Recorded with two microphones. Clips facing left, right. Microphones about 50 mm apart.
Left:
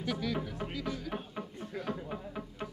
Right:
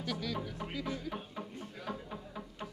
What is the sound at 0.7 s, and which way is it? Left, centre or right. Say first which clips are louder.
Speech: left 1 dB; centre.